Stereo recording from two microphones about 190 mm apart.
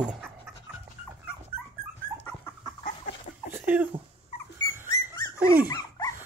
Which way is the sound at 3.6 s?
5° right (ahead or behind).